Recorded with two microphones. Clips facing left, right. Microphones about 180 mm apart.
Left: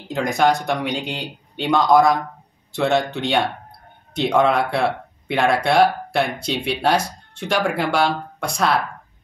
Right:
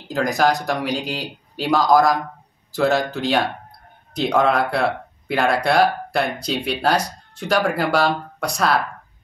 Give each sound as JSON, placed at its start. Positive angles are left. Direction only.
{"t": 0.1, "sound": "speech", "side_deg": 0}